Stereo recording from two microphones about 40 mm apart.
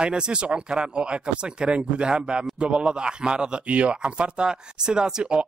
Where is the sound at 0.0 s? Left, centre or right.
Right.